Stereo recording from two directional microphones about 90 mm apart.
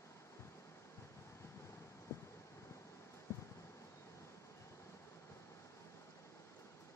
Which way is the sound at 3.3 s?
25° left (ahead or behind).